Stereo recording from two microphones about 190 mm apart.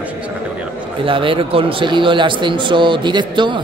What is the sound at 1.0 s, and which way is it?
A man's voice, 25° right (ahead or behind).